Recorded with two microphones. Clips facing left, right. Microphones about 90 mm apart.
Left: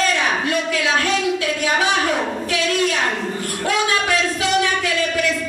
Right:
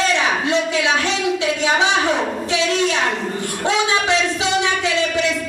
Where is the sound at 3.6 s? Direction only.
20° right (ahead or behind).